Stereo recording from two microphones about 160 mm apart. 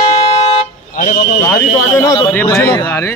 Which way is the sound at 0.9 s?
55° left (ahead or behind).